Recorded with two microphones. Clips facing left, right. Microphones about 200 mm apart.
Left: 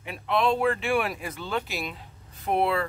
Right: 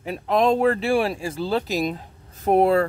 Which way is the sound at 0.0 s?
40° right (ahead or behind).